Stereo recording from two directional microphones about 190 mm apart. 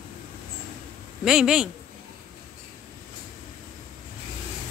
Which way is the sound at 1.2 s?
5° right (ahead or behind).